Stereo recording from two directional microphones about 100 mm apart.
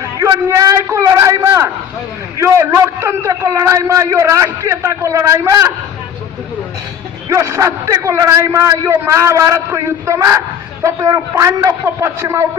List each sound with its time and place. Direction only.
0.5 s a sound: 35° right (ahead or behind)
2.3 s a man's voice: 30° right (ahead or behind)
7.2 s a man's voice: 30° right (ahead or behind)